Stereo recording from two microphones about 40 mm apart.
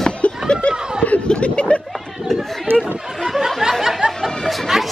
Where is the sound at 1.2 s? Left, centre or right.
Left.